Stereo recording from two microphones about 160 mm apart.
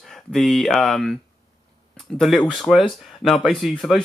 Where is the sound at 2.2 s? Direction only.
Centre (ahead or behind).